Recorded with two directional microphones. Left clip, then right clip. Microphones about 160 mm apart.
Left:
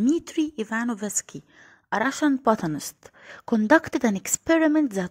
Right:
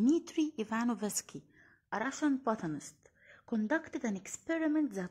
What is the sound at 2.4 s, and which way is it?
A woman's voice, 45° left (ahead or behind).